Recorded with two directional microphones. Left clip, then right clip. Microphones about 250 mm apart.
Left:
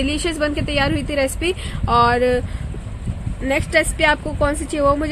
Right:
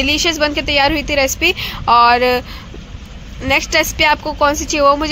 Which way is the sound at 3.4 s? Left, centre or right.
Centre.